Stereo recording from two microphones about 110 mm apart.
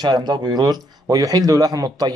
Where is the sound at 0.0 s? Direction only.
40° right (ahead or behind).